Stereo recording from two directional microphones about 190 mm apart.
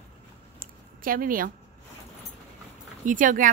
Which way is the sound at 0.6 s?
50° right (ahead or behind).